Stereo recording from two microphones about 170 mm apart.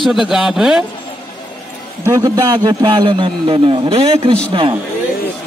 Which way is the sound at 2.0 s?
20° right (ahead or behind).